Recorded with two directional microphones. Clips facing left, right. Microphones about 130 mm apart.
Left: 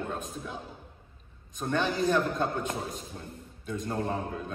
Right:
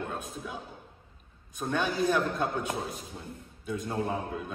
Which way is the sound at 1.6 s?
5° right (ahead or behind).